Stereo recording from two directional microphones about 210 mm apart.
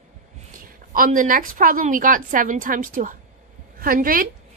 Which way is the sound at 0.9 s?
40° right (ahead or behind).